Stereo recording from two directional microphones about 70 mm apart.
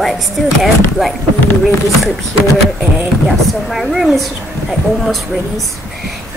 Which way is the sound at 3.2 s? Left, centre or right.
Centre.